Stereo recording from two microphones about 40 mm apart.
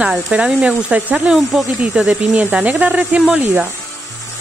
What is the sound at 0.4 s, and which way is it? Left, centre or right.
Speech, right.